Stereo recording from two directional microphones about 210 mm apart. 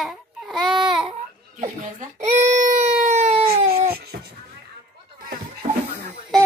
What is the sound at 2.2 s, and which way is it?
Baby cry, 35° right (ahead or behind).